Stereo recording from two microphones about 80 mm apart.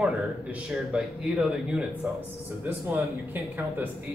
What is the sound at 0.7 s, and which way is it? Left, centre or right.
Speech, centre.